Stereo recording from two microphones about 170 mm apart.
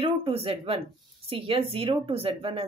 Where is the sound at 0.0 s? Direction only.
35° right (ahead or behind).